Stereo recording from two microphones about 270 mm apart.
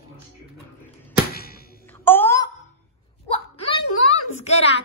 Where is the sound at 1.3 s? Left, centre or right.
Left.